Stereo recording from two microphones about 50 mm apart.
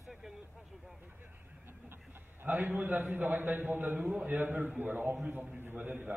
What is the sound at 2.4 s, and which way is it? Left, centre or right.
A man's voice, right.